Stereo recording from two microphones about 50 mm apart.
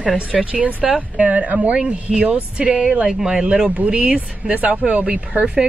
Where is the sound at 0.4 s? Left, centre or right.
Right.